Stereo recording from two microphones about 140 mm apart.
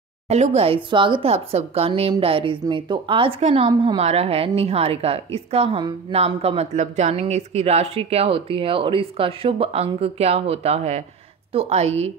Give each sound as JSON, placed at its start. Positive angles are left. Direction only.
{"t": 0.3, "sound": "speech", "side_deg": -50}
{"t": 6.1, "sound": "speech", "side_deg": -45}